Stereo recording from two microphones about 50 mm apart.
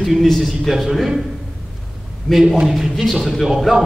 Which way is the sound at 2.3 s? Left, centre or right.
Centre.